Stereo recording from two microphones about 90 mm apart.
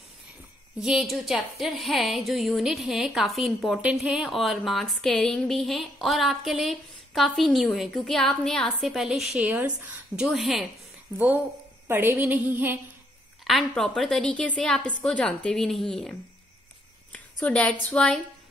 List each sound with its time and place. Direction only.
0.7 s a woman's voice: 5° right (ahead or behind)
9.4 s a woman's voice: 15° right (ahead or behind)
10.1 s a woman's voice: 5° right (ahead or behind)
11.1 s a woman's voice: 20° right (ahead or behind)
11.9 s a sound: 25° right (ahead or behind)
13.4 s a woman's voice: centre (ahead or behind)